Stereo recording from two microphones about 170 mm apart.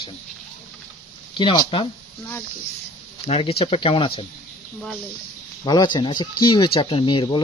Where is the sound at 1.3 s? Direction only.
30° left (ahead or behind).